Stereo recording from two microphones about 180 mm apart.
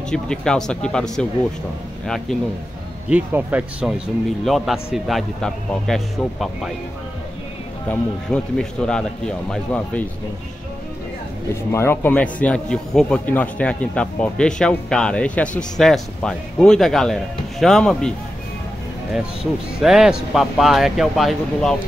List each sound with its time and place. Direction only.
0.1 s a man's voice: 5° left (ahead or behind)
3.1 s a man's voice: 10° right (ahead or behind)
7.9 s a man's voice: 5° left (ahead or behind)
11.7 s a man's voice: 15° left (ahead or behind)
19.8 s a man's voice: 5° right (ahead or behind)